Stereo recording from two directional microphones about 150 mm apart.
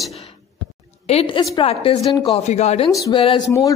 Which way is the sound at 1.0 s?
40° left (ahead or behind).